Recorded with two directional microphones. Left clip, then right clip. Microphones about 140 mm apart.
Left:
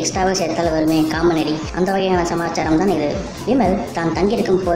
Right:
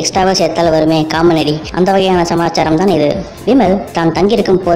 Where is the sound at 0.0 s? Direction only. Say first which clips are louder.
Right 7 dB; 45° right (ahead or behind).